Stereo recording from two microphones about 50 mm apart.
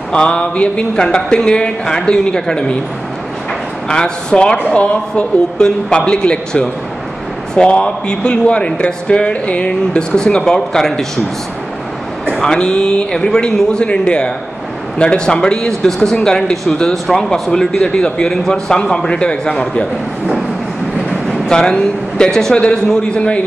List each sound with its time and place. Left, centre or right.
0.1 s speech: centre
3.9 s speech: centre
12.4 s speech: centre
15.9 s speech: centre
16.2 s speech: centre
21.5 s speech: centre